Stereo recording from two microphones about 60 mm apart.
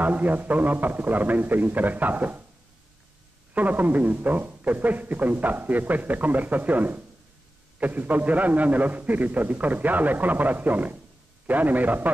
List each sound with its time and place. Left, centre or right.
0.0 s speech: right
3.5 s speech: right